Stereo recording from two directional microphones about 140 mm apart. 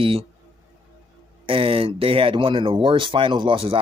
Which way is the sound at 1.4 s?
40° right (ahead or behind).